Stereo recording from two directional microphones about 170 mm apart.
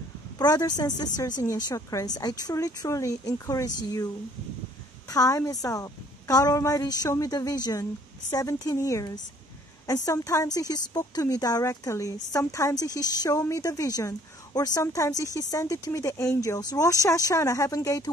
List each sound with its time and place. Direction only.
0.4 s a woman's voice: 25° left (ahead or behind)
5.1 s a woman's voice: 20° left (ahead or behind)